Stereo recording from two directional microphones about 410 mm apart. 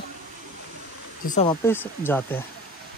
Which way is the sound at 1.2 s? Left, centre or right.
Centre.